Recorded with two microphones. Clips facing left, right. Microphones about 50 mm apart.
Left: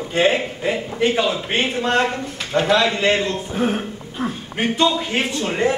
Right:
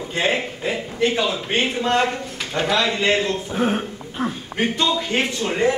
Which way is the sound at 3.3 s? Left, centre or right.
Centre.